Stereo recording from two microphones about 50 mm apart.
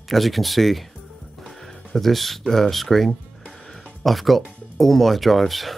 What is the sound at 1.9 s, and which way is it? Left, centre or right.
Speech, centre.